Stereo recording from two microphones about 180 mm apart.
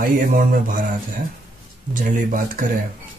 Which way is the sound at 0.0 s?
50° right (ahead or behind).